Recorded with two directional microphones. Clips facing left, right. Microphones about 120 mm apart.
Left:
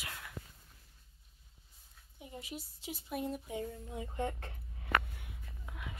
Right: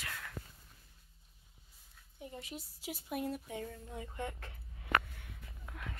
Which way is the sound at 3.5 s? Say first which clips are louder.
Left 3 dB; 25° left (ahead or behind).